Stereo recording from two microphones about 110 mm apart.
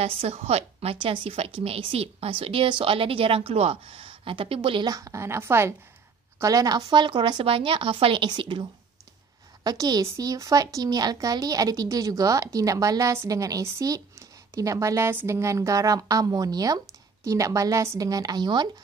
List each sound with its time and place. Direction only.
0.0 s a woman's voice: 60° right (ahead or behind)
4.9 s a woman's voice: 30° right (ahead or behind)
7.4 s a woman's voice: 55° right (ahead or behind)
9.6 s speech: 35° right (ahead or behind)